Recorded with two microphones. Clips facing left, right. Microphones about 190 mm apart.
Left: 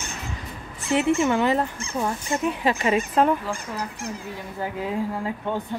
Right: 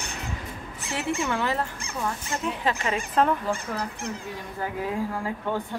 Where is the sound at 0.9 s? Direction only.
20° left (ahead or behind).